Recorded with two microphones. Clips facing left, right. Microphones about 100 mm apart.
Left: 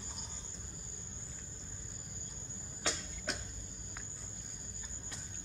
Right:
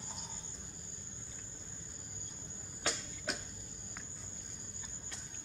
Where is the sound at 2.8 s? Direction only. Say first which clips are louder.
Even; centre (ahead or behind).